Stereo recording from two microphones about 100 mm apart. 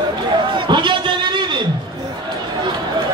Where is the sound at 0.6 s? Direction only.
50° right (ahead or behind).